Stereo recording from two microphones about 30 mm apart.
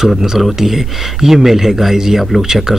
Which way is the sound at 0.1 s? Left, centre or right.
Centre.